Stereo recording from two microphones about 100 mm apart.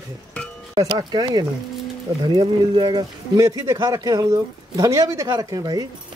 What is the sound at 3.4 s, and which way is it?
Speech, 35° right (ahead or behind).